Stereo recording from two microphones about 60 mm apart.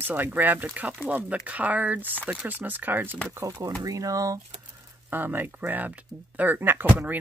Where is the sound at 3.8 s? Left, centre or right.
Right.